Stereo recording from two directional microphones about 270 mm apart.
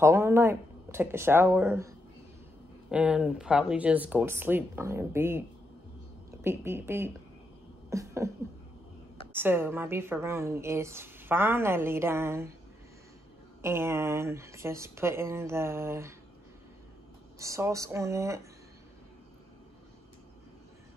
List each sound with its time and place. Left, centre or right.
0.0 s a woman's voice: centre
6.4 s a woman's voice: centre
7.9 s a sound: centre
9.3 s a woman's voice: centre
13.6 s a woman's voice: centre
17.4 s a woman's voice: centre